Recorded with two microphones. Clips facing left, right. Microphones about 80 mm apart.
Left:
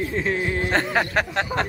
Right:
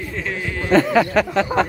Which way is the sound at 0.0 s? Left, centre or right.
Left.